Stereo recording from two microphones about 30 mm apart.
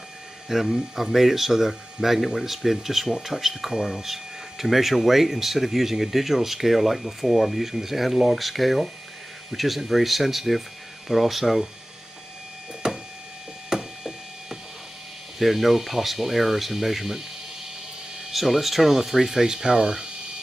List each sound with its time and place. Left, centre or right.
0.5 s speech: centre
12.8 s a sound: right
15.3 s speech: centre
18.3 s speech: centre